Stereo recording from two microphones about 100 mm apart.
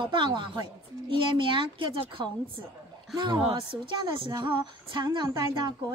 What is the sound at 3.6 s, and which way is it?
A woman's voice, 50° right (ahead or behind).